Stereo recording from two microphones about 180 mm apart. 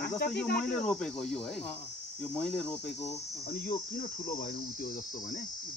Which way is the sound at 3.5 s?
55° left (ahead or behind).